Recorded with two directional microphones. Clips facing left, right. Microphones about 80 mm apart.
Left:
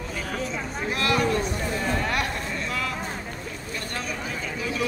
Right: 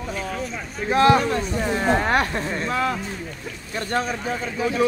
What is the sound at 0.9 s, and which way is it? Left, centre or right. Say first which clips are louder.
Speech: right 7 dB; right.